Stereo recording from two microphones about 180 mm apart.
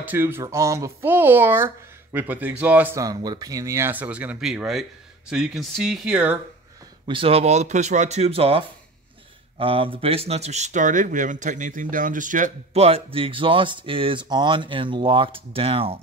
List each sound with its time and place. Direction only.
0.0 s speech: 10° right (ahead or behind)
7.1 s speech: 30° right (ahead or behind)